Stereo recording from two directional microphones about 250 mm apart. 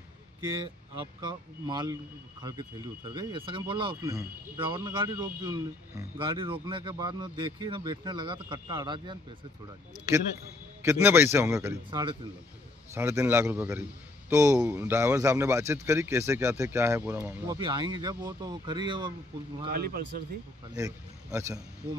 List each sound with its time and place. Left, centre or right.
1.7 s speech: centre
3.1 s speech: centre
10.8 s speech: centre
19.7 s a man's voice: right
20.7 s a man's voice: centre